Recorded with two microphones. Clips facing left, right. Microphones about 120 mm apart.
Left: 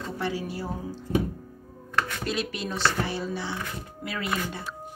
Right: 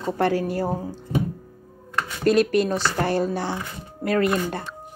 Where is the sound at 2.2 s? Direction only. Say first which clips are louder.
Right 12 dB; 50° right (ahead or behind).